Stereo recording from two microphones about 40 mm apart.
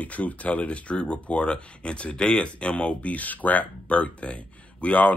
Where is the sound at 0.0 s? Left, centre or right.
Left.